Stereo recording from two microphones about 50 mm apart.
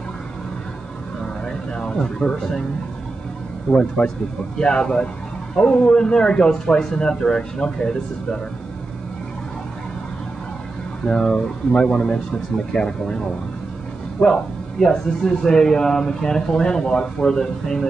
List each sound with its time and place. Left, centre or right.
1.2 s a sound: centre
3.7 s a man's voice: left
11.1 s speech: centre